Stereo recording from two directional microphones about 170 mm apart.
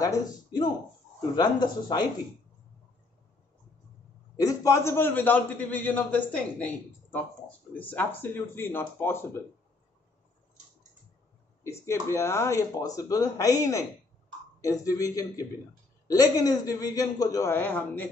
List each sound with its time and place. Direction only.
0.0 s a man's voice: 25° left (ahead or behind)
4.4 s a man's voice: 20° left (ahead or behind)
11.6 s a man's voice: 15° left (ahead or behind)
14.6 s a man's voice: 20° left (ahead or behind)